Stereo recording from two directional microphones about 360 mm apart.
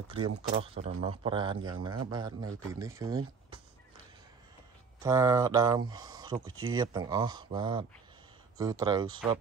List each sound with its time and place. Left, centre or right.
0.5 s a man's voice: centre
5.0 s a man's voice: centre
6.4 s speech: right
6.7 s a man's voice: centre